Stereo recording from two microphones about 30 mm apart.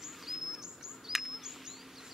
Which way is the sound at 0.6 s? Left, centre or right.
Centre.